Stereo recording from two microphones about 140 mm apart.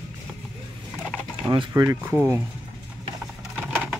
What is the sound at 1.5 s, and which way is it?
Speech, 30° right (ahead or behind).